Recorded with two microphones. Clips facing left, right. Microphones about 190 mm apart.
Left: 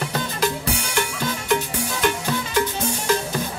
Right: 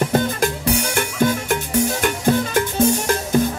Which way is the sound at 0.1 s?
50° right (ahead or behind).